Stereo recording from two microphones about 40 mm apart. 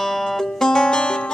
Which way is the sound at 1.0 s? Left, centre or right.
Left.